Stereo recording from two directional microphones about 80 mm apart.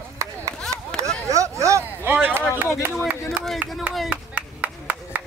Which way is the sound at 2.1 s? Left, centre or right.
Right.